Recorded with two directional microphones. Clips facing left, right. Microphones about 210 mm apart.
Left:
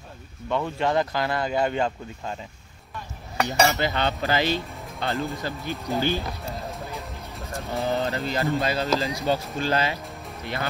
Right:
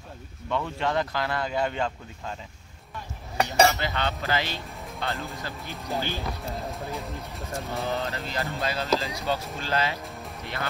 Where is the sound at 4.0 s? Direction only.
30° left (ahead or behind).